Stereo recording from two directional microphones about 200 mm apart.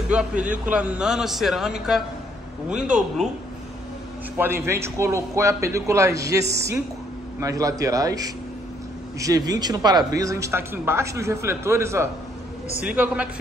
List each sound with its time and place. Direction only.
0.1 s a man's voice: 5° right (ahead or behind)
4.4 s speech: 10° right (ahead or behind)